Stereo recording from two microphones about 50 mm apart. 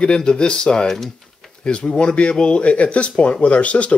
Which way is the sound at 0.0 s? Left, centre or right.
Centre.